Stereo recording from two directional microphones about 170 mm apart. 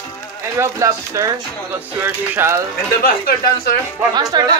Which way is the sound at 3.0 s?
60° left (ahead or behind).